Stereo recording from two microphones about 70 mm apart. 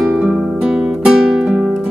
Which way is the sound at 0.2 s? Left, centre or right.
Centre.